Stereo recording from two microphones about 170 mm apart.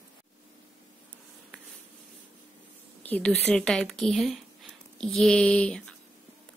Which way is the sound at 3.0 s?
5° left (ahead or behind).